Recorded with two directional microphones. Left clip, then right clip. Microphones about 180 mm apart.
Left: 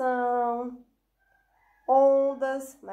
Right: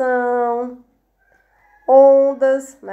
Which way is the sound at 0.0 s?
30° right (ahead or behind).